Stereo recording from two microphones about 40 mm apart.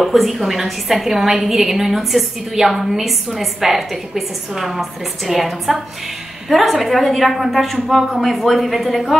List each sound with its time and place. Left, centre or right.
0.0 s a woman's voice: centre